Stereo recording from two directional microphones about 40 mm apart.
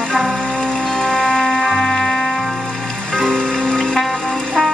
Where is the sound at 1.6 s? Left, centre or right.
Centre.